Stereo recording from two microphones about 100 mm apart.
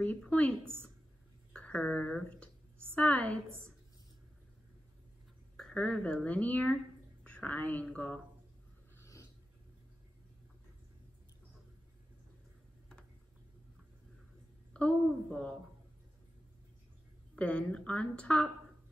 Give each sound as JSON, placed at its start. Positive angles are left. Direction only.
{"t": 0.0, "sound": "speech", "side_deg": 15}
{"t": 5.6, "sound": "a woman's voice", "side_deg": 5}
{"t": 8.9, "sound": "a sound", "side_deg": 30}
{"t": 14.7, "sound": "a sound", "side_deg": 10}
{"t": 15.0, "sound": "a woman's voice", "side_deg": 5}
{"t": 17.4, "sound": "speech", "side_deg": 10}